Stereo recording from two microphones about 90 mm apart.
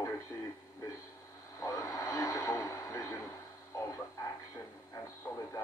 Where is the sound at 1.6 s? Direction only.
40° left (ahead or behind).